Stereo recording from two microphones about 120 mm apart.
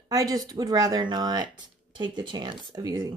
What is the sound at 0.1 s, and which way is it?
Speech, 30° right (ahead or behind).